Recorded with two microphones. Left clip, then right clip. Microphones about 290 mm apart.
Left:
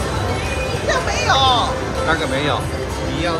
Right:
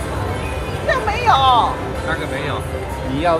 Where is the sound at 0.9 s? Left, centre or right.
Right.